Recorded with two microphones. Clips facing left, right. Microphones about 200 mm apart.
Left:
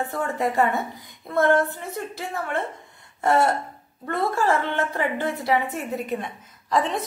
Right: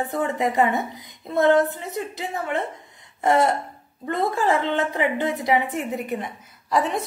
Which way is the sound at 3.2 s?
15° right (ahead or behind).